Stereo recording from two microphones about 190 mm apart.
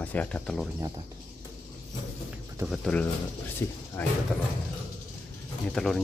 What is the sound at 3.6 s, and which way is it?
Speech, 15° left (ahead or behind).